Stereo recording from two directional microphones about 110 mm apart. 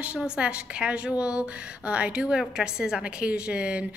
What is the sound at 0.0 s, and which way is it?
A woman's voice, 10° right (ahead or behind).